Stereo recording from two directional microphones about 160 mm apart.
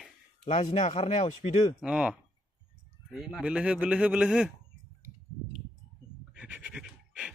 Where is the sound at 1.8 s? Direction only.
5° right (ahead or behind).